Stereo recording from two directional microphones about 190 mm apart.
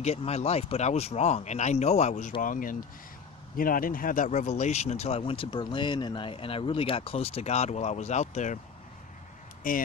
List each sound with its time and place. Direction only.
0.0 s speech: 35° left (ahead or behind)
9.6 s speech: 45° left (ahead or behind)